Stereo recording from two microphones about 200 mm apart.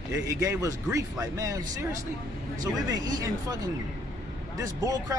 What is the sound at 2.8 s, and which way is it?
Speech, 20° right (ahead or behind).